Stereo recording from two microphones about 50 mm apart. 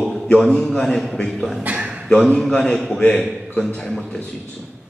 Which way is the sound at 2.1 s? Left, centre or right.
Centre.